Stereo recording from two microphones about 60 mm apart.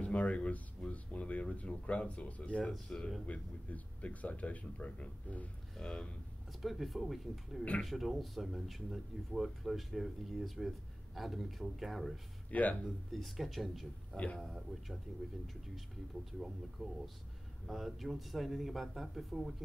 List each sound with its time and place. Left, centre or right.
0.0 s speech: left
5.8 s speech: centre
6.6 s speech: centre
12.4 s speech: left
12.8 s speech: centre
14.1 s speech: centre
14.4 s speech: centre
16.8 s speech: centre